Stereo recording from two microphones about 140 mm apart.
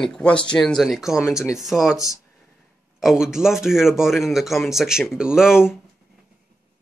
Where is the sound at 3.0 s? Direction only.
5° right (ahead or behind).